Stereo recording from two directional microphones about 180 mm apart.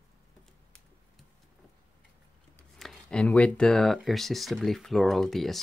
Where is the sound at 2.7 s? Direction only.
5° left (ahead or behind).